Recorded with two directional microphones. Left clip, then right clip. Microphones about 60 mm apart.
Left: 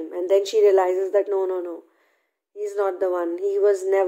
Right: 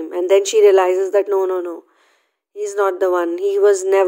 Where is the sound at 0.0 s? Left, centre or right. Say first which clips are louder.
Right 6 dB; right.